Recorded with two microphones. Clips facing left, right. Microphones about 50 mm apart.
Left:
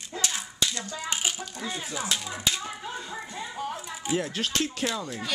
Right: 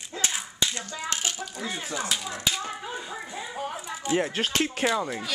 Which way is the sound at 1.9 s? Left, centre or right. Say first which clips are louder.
Right 1 dB; centre.